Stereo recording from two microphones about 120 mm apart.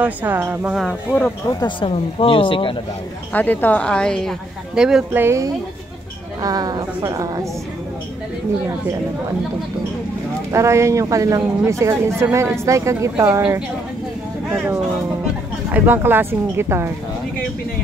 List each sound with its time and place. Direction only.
0.0 s speech: 15° right (ahead or behind)
1.5 s speech: 35° left (ahead or behind)
1.9 s speech: 50° left (ahead or behind)
3.3 s a woman's voice: 15° left (ahead or behind)
4.7 s speech: 5° right (ahead or behind)
5.1 s speech: 20° right (ahead or behind)
6.4 s a woman's voice: 30° right (ahead or behind)
10.5 s speech: 25° right (ahead or behind)
15.7 s speech: 15° right (ahead or behind)